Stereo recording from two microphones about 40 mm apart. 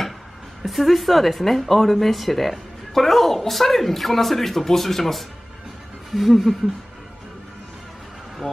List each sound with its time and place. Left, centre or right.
0.7 s speech: centre